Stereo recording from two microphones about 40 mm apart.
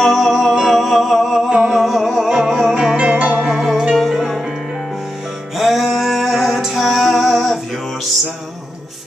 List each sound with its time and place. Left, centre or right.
0.0 s music: centre
2.2 s music: centre
3.2 s music: right
3.4 s music: centre
5.6 s music: centre